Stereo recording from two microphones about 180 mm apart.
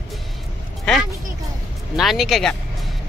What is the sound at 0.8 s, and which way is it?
Speech, centre (ahead or behind).